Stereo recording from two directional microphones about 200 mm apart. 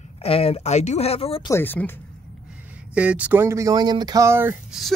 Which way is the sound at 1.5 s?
10° left (ahead or behind).